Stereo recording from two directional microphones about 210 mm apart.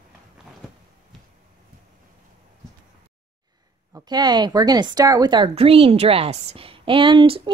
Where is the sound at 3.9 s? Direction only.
20° right (ahead or behind).